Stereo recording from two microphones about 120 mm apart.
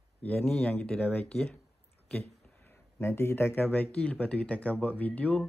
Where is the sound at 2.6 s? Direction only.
15° left (ahead or behind).